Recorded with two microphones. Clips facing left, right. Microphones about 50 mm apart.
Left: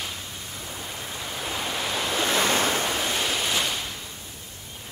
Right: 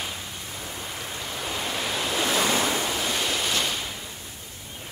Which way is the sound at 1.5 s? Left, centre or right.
Centre.